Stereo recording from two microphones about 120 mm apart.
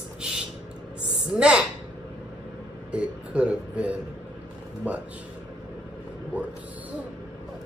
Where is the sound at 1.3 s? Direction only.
5° right (ahead or behind).